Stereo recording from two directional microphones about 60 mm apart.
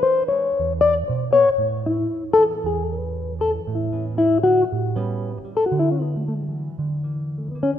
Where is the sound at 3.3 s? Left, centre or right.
Centre.